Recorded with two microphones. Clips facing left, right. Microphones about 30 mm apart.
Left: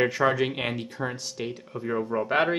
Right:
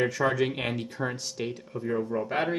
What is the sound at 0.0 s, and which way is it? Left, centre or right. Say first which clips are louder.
Speech: left 2 dB; centre.